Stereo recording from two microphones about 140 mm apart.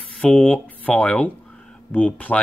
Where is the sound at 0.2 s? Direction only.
10° left (ahead or behind).